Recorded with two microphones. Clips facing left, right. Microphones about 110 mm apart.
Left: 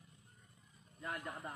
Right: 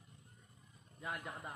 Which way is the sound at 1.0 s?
10° right (ahead or behind).